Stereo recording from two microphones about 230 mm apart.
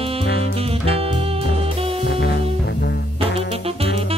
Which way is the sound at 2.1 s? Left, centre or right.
Left.